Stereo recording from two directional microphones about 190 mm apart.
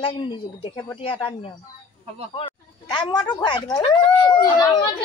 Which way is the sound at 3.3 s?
25° left (ahead or behind).